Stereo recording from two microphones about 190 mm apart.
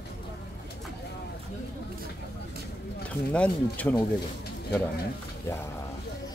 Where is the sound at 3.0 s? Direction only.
5° left (ahead or behind).